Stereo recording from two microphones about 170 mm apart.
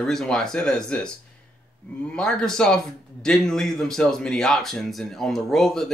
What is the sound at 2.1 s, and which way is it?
Speech, 5° left (ahead or behind).